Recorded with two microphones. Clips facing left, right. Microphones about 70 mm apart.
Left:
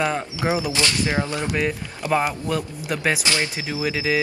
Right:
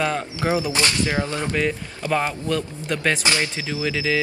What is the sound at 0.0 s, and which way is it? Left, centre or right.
Speech, centre.